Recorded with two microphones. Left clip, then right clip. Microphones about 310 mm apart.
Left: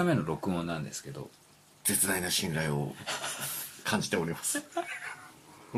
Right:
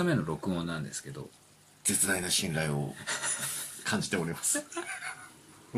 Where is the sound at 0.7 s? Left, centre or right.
Centre.